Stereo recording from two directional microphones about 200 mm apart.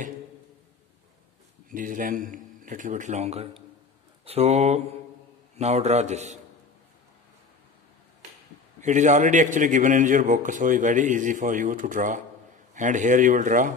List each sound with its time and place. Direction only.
1.7 s a man's voice: 45° right (ahead or behind)
8.8 s a man's voice: 35° right (ahead or behind)